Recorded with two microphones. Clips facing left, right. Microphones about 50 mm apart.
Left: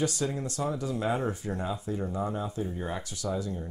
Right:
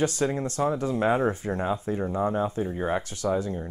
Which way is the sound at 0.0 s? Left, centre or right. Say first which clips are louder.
Right 5 dB; right.